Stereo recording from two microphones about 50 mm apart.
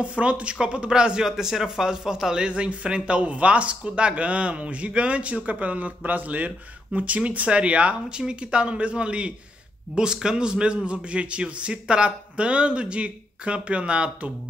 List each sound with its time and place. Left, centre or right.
0.0 s speech: right